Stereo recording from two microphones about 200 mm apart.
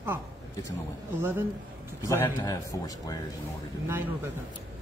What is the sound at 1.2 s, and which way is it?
Speech, 10° right (ahead or behind).